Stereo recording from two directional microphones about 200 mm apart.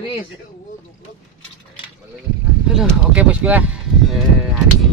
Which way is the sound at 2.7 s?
5° right (ahead or behind).